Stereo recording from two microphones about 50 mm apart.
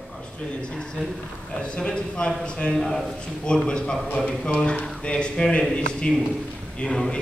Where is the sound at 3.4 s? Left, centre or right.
Centre.